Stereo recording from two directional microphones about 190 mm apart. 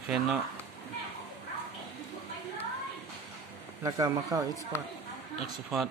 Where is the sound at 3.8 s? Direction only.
20° right (ahead or behind).